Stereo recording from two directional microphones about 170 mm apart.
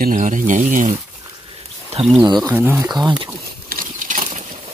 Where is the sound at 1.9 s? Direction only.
40° right (ahead or behind).